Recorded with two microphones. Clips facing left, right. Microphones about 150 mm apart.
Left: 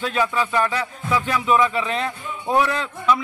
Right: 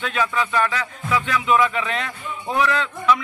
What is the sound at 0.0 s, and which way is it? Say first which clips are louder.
Speech: left 1 dB; 35° left (ahead or behind).